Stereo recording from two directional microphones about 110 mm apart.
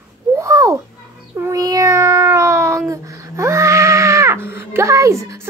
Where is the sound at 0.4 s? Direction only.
30° right (ahead or behind).